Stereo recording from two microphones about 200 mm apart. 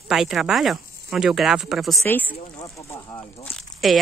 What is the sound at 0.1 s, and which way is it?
Speech, centre (ahead or behind).